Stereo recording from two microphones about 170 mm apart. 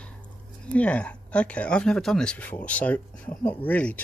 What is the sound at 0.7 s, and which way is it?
Speech, 5° left (ahead or behind).